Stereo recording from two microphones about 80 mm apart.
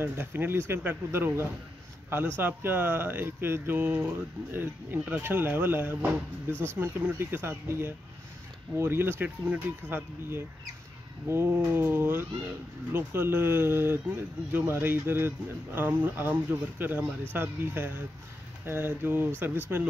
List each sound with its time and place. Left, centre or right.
0.0 s speech: right